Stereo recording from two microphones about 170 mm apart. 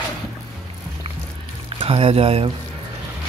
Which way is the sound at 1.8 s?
35° right (ahead or behind).